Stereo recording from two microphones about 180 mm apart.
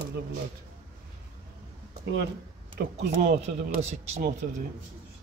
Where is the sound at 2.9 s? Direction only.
50° right (ahead or behind).